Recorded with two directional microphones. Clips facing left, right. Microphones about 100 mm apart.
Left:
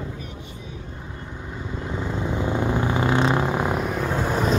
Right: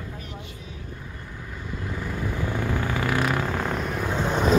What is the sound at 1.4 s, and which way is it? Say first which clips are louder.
Vehicle: left 3 dB; 20° left (ahead or behind).